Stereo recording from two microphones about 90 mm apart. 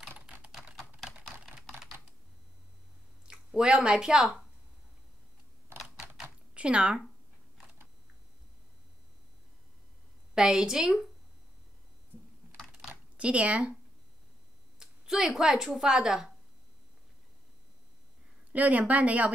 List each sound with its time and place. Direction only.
0.1 s typing: 15° right (ahead or behind)
0.5 s typing: 5° right (ahead or behind)
3.3 s speech: 10° right (ahead or behind)
6.2 s typing: 10° right (ahead or behind)
10.3 s a woman's voice: 5° right (ahead or behind)
12.8 s a sound: 15° right (ahead or behind)
14.8 s speech: 5° right (ahead or behind)
18.5 s a woman's voice: 15° right (ahead or behind)